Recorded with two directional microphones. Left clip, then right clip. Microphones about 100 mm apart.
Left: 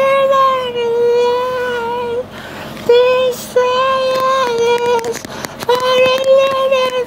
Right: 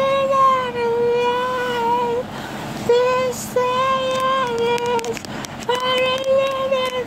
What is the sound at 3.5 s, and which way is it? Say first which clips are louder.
Child singing: left 5 dB; 25° left (ahead or behind).